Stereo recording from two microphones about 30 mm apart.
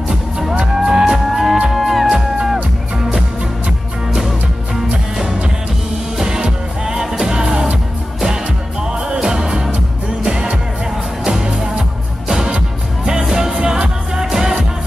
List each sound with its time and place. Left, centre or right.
0.1 s music: centre
1.7 s music: centre
4.7 s music: centre
9.2 s music: right
12.3 s music: centre
13.6 s music: right